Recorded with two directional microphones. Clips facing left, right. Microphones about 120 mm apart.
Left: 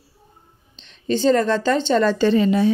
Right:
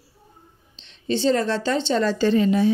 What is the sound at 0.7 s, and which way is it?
Speech, 45° left (ahead or behind).